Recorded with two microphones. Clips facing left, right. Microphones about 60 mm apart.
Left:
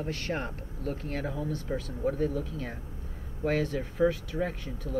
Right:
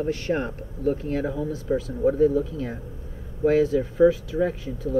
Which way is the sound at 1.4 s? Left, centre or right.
Centre.